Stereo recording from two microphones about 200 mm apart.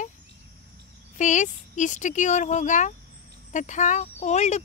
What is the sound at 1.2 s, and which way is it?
Speech, 40° left (ahead or behind).